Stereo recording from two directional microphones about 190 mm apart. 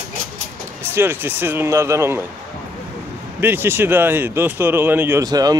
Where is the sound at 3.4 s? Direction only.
10° right (ahead or behind).